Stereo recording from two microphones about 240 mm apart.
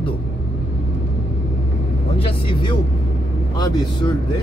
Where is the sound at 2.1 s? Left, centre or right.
Left.